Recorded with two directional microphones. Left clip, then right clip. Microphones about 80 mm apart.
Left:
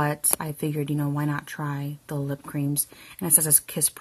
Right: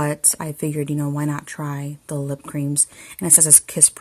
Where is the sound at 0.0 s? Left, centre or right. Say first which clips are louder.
Right 3 dB; right.